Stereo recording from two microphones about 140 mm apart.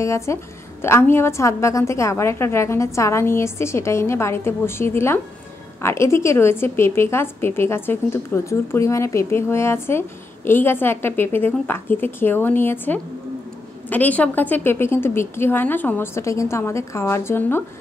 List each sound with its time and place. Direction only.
0.0 s a woman's voice: 20° left (ahead or behind)